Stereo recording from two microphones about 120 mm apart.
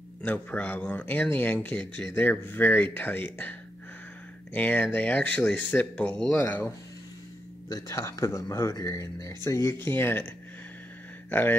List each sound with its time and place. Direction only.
0.2 s speech: 10° left (ahead or behind)
4.6 s speech: 15° left (ahead or behind)
7.7 s speech: 25° left (ahead or behind)
11.2 s speech: 15° left (ahead or behind)